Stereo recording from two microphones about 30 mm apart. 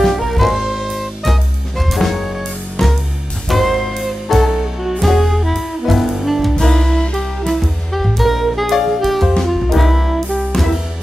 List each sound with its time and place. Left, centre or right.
0.0 s music: centre
2.8 s music: centre
3.4 s music: centre
4.5 s music: centre
6.6 s music: centre
7.4 s music: centre
8.2 s saxophone: centre
9.4 s music: centre